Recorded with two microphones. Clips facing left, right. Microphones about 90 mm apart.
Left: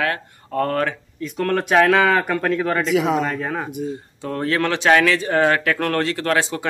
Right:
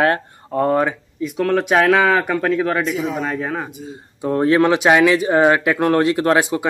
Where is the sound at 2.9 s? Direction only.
90° left.